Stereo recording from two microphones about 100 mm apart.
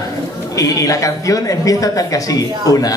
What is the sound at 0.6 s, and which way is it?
Speech, 35° left (ahead or behind).